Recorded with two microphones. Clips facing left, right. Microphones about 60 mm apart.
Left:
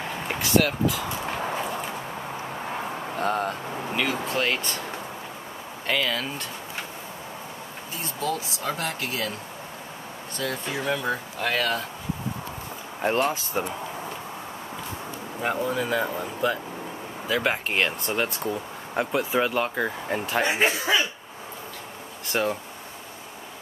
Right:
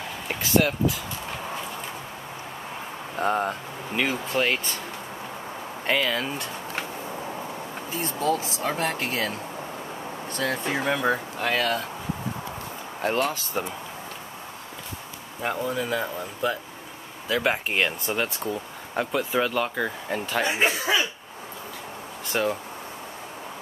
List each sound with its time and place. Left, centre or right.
0.4 s speech: centre
3.2 s speech: centre
5.9 s speech: centre
8.0 s speech: right
10.4 s speech: right
11.4 s speech: centre
13.1 s speech: left
15.4 s speech: centre
20.5 s a sound: centre
22.3 s speech: centre